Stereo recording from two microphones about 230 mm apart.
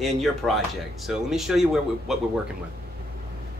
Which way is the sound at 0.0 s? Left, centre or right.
Centre.